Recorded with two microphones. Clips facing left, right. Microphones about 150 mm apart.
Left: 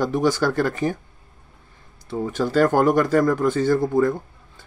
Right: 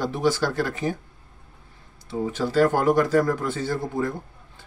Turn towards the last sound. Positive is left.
turn(degrees=45)  # may be behind; listen again after turning